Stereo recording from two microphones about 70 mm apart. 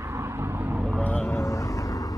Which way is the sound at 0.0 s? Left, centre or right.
Right.